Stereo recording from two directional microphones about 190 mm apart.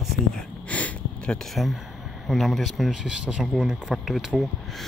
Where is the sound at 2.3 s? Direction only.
Centre (ahead or behind).